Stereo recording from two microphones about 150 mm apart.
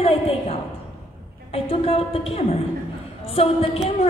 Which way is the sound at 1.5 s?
40° left (ahead or behind).